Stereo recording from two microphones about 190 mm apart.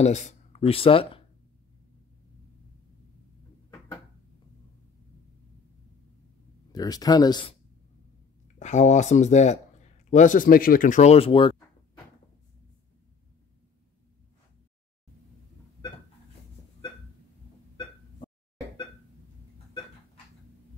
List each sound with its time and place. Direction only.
0.0 s speech: 40° left (ahead or behind)
6.7 s speech: 20° left (ahead or behind)
8.5 s speech: 40° left (ahead or behind)